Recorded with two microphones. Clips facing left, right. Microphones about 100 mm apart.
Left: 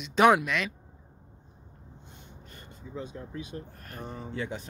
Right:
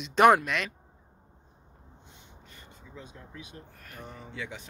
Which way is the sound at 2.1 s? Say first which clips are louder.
Left 3 dB; 50° left (ahead or behind).